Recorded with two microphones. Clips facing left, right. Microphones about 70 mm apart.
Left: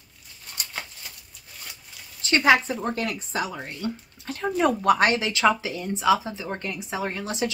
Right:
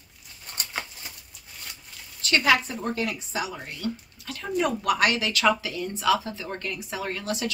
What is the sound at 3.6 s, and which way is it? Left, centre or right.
Speech, left.